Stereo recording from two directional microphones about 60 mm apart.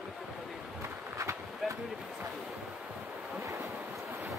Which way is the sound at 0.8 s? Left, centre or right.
Right.